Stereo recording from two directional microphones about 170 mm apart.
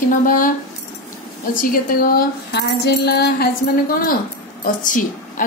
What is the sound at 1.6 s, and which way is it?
Speech, 55° left (ahead or behind).